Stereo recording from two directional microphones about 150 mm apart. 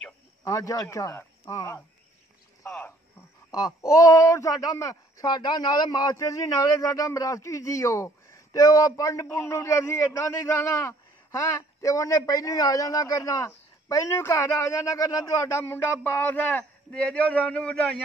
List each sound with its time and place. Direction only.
0.4 s speech: 20° left (ahead or behind)
3.5 s speech: 20° left (ahead or behind); by 18.0 s 5° left (ahead or behind)